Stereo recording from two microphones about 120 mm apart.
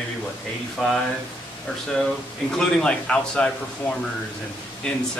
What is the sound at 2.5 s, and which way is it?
Speech, 10° left (ahead or behind).